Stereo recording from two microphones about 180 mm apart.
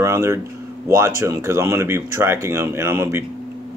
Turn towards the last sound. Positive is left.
turn(degrees=-15)  # may be behind; listen again after turning